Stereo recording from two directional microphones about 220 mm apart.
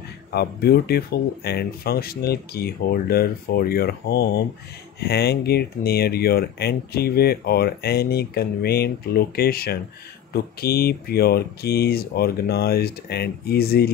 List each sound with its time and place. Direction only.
0.3 s speech: 45° left (ahead or behind)